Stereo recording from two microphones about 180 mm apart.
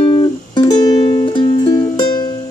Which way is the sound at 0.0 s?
25° left (ahead or behind).